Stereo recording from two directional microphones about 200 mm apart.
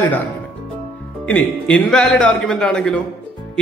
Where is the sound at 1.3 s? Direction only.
5° left (ahead or behind).